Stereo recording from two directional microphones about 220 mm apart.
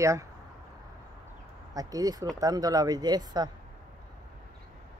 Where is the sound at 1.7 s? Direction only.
15° right (ahead or behind).